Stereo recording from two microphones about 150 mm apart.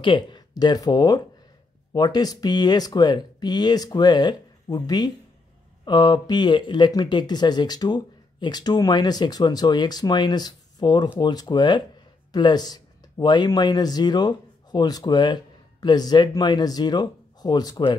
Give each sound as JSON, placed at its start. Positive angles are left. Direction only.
{"t": 0.0, "sound": "speech", "side_deg": 30}